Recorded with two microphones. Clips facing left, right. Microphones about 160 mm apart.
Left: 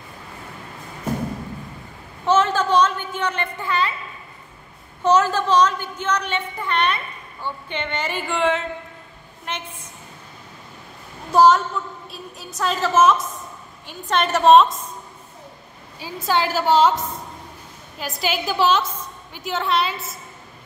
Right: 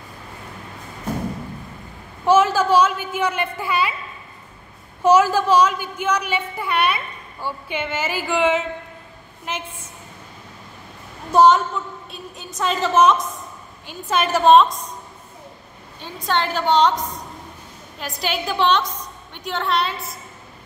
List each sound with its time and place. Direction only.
2.2 s a woman's voice: 10° right (ahead or behind)
5.0 s a woman's voice: 10° right (ahead or behind)
11.3 s a woman's voice: centre (ahead or behind)
16.0 s a woman's voice: 5° left (ahead or behind)